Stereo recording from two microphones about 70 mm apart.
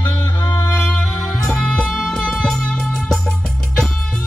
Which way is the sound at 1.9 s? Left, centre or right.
Centre.